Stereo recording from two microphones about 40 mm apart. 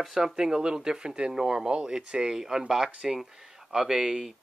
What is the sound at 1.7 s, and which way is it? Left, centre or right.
Speech, right.